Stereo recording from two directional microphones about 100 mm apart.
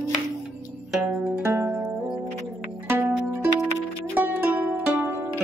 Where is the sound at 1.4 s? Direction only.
20° right (ahead or behind).